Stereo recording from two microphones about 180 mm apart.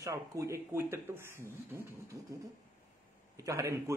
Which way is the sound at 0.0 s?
20° right (ahead or behind).